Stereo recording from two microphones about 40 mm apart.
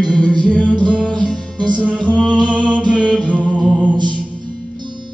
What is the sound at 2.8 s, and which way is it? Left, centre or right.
Mantra, left.